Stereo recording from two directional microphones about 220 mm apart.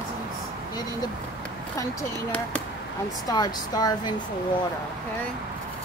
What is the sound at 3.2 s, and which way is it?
Speech, 15° left (ahead or behind).